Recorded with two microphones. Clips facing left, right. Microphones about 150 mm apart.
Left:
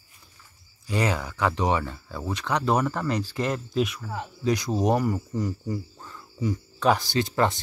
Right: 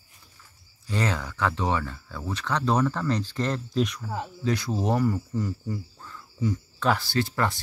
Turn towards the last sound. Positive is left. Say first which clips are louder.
# left 2 dB
turn(degrees=20)  # may be behind; listen again after turning